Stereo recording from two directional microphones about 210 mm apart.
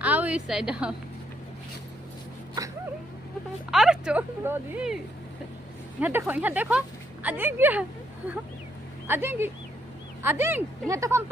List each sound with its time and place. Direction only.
0.0 s a woman's voice: 5° right (ahead or behind)
3.7 s speech: centre (ahead or behind)
9.0 s speech: 10° right (ahead or behind)